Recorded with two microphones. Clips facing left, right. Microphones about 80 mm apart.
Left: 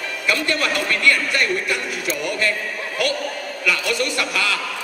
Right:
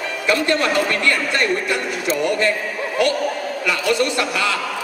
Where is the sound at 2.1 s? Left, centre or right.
Centre.